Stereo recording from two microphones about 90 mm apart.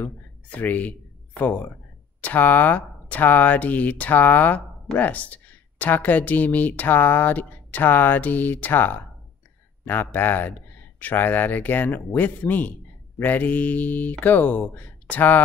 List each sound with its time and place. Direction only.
0.0 s speech: 15° left (ahead or behind)